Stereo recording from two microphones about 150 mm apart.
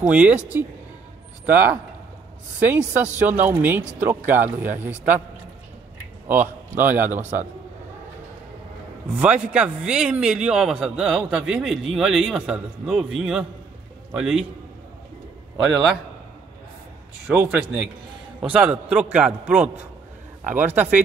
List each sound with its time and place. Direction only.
0.0 s a man's voice: 10° right (ahead or behind)
6.2 s a man's voice: 15° right (ahead or behind)
9.1 s speech: 10° right (ahead or behind)
15.6 s speech: centre (ahead or behind)
17.3 s a man's voice: 10° right (ahead or behind)